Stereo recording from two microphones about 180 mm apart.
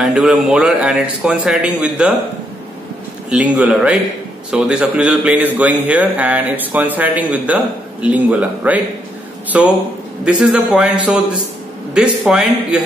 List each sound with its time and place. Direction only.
0.0 s speech: centre (ahead or behind)
3.3 s a man's voice: 5° right (ahead or behind)